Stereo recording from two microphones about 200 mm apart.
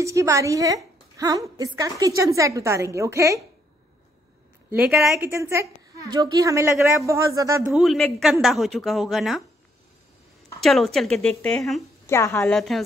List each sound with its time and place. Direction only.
0.0 s a woman's voice: 15° right (ahead or behind)
1.1 s a sound: 15° right (ahead or behind)
1.6 s a woman's voice: 15° right (ahead or behind)
4.7 s a woman's voice: 5° right (ahead or behind)
5.3 s a woman's voice: 15° right (ahead or behind)
7.7 s a woman's voice: centre (ahead or behind)
10.6 s a woman's voice: centre (ahead or behind)
12.1 s a woman's voice: 15° left (ahead or behind)
12.4 s a woman's voice: centre (ahead or behind)